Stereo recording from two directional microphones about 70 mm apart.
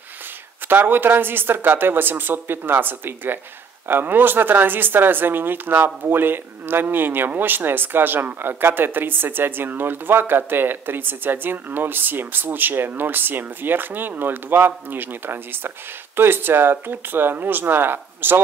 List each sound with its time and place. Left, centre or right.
0.7 s speech: right